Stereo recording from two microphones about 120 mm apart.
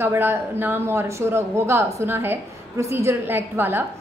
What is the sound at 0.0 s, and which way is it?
A woman's voice, 20° right (ahead or behind).